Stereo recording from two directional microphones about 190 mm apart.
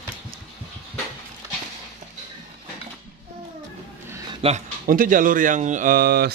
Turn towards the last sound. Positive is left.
turn(degrees=-55)  # may be behind; listen again after turning